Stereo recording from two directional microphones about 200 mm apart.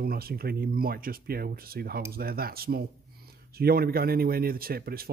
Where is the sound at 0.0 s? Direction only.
50° right (ahead or behind).